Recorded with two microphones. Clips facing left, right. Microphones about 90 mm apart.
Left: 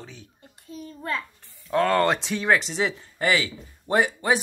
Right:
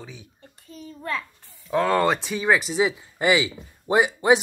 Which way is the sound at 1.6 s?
Centre (ahead or behind).